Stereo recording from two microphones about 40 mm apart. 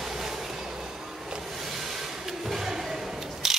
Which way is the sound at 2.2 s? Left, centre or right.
Centre.